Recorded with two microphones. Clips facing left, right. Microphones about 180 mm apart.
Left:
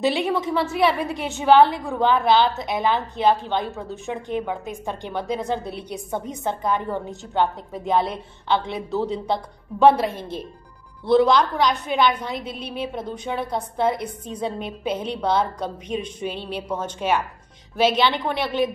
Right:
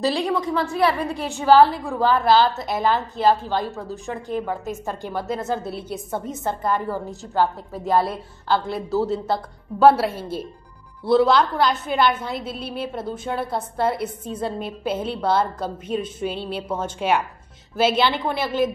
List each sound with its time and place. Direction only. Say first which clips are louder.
0.1 s a woman's voice: even; 20° left (ahead or behind)
0.4 s a woman's voice: even; 5° left (ahead or behind)